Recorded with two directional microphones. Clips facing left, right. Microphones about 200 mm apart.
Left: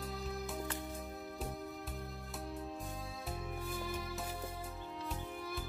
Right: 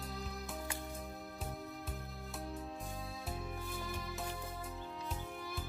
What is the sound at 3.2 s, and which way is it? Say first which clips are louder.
Music: left 3 dB; centre (ahead or behind).